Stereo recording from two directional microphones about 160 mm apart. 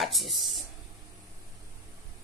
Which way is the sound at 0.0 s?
Centre (ahead or behind).